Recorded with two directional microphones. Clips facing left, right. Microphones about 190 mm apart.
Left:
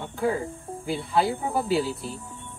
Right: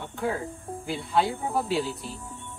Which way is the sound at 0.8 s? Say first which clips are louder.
Left 2 dB; centre (ahead or behind).